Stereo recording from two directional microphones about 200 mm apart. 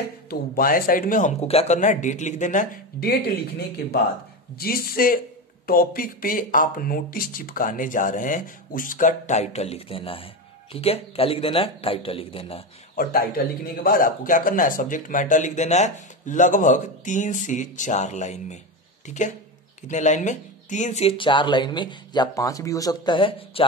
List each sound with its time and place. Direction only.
0.3 s speech: 45° left (ahead or behind); by 12.6 s 30° left (ahead or behind)
12.9 s speech: 45° left (ahead or behind); by 23.6 s 25° left (ahead or behind)